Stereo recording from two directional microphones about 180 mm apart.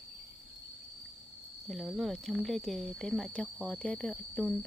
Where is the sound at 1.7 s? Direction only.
Centre (ahead or behind).